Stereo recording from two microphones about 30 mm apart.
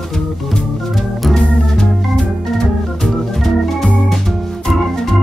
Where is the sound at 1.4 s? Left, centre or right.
Left.